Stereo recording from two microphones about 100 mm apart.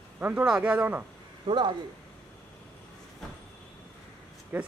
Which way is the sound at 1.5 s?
50° right (ahead or behind).